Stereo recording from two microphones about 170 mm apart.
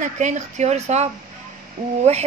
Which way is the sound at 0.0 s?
45° right (ahead or behind).